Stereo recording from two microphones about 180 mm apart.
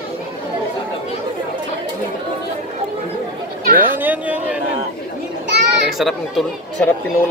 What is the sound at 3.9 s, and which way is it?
Speech, 10° right (ahead or behind).